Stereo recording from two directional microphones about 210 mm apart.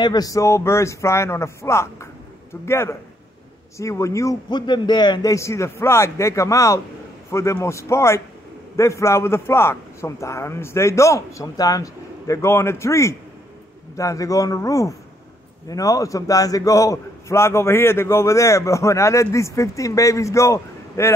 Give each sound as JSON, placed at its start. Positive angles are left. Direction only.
{"t": 0.0, "sound": "a man's voice", "side_deg": 20}